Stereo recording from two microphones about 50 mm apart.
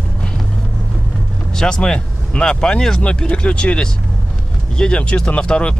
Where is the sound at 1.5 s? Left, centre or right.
Centre.